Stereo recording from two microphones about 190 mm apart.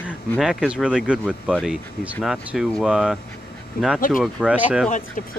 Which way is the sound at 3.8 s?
50° left (ahead or behind).